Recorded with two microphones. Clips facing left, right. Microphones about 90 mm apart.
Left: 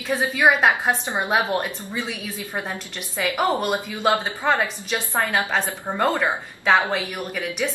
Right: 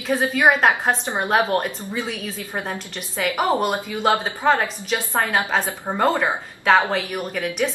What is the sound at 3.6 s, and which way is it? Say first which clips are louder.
Speech: right 2 dB; centre (ahead or behind).